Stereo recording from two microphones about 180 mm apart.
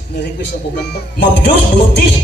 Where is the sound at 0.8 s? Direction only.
65° left (ahead or behind).